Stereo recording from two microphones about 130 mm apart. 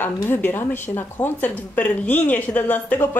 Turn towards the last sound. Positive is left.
turn(degrees=10)  # may be behind; listen again after turning